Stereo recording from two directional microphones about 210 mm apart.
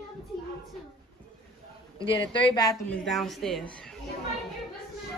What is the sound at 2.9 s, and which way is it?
Speech, centre (ahead or behind).